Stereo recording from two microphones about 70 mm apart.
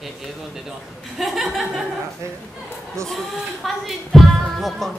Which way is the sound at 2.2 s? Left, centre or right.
Right.